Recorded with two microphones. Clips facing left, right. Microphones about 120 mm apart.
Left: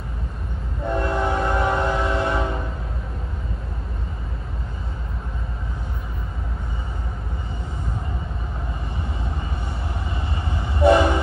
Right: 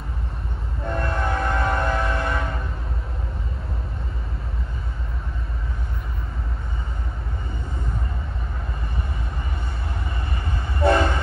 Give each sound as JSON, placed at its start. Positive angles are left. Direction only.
{"t": 0.8, "sound": "train", "side_deg": 20}
{"t": 10.3, "sound": "train", "side_deg": 20}